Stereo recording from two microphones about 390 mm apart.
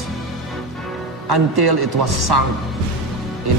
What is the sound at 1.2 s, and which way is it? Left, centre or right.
A man's voice, right.